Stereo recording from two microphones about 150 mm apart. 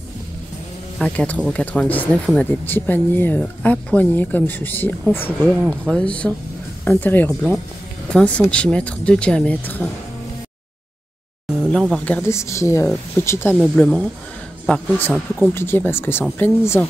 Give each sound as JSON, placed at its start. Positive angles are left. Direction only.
{"t": 0.9, "sound": "speech", "side_deg": 5}
{"t": 12.0, "sound": "speech", "side_deg": 15}
{"t": 13.7, "sound": "speech", "side_deg": 5}